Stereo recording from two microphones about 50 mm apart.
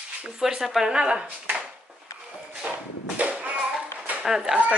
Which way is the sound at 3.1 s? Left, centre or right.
Right.